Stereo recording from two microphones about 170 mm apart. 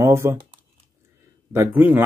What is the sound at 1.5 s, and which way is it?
Speech, 10° right (ahead or behind).